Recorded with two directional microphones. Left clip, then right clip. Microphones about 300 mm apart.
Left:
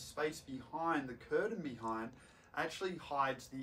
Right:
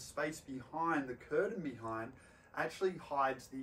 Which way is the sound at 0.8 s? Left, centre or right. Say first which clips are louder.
Right 2 dB; centre.